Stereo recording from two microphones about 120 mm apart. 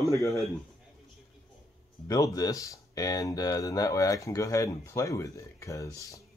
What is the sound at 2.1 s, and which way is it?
Speech, 30° left (ahead or behind).